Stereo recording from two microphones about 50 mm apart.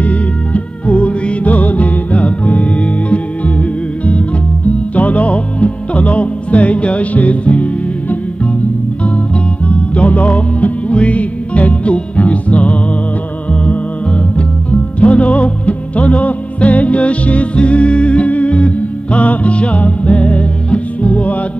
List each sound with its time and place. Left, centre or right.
0.0 s music: left